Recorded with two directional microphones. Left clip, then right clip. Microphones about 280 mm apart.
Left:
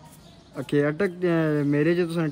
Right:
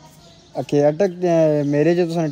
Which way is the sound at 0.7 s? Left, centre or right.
Centre.